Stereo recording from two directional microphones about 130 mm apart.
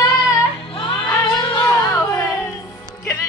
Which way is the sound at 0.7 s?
40° left (ahead or behind).